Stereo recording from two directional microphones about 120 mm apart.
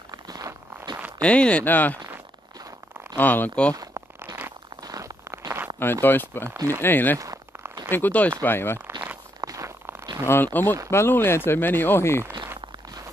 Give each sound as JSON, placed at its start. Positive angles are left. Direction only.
{"t": 0.1, "sound": "a sound", "side_deg": -30}
{"t": 1.2, "sound": "speech", "side_deg": 10}
{"t": 3.2, "sound": "speech", "side_deg": 15}
{"t": 3.7, "sound": "a sound", "side_deg": -30}
{"t": 5.8, "sound": "speech", "side_deg": 20}
{"t": 6.5, "sound": "speech", "side_deg": -30}
{"t": 6.8, "sound": "speech", "side_deg": 15}
{"t": 7.2, "sound": "a sound", "side_deg": -30}
{"t": 7.9, "sound": "speech", "side_deg": 15}
{"t": 9.4, "sound": "zipper", "side_deg": -25}
{"t": 10.2, "sound": "speech", "side_deg": 15}